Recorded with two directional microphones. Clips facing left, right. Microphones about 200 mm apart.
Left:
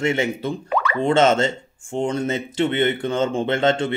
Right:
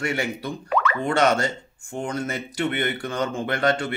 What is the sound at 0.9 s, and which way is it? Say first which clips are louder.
Speech: left 6 dB; 25° left (ahead or behind).